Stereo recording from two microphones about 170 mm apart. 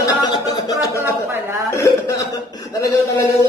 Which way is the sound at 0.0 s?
25° left (ahead or behind).